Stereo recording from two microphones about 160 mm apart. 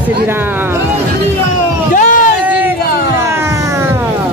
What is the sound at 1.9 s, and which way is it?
Run, 60° left (ahead or behind).